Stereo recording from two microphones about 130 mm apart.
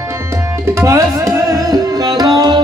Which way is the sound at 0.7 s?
25° right (ahead or behind).